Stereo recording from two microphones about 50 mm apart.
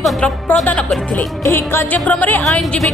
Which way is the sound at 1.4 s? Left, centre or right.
Left.